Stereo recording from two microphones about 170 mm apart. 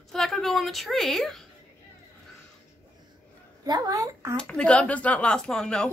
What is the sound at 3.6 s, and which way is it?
Speech, 20° right (ahead or behind).